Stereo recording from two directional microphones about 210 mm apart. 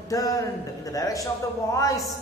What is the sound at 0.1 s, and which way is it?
A woman's voice, 15° left (ahead or behind).